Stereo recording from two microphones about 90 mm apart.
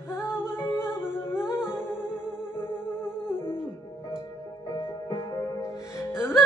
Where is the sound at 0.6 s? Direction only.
30° left (ahead or behind).